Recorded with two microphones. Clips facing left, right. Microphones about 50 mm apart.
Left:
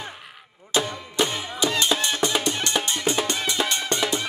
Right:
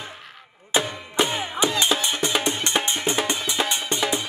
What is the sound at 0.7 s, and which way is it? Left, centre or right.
Music, centre.